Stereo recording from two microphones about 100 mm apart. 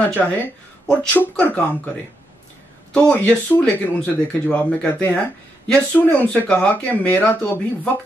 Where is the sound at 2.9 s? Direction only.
15° left (ahead or behind).